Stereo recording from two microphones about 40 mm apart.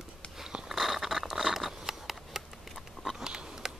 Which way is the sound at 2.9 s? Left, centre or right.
Centre.